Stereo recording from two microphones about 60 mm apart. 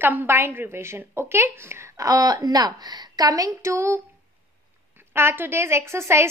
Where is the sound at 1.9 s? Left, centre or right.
Right.